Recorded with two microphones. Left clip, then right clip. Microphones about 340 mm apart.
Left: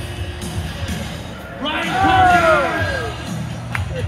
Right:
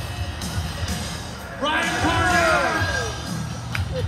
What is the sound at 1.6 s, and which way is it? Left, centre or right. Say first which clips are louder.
Speech: left 4 dB; right.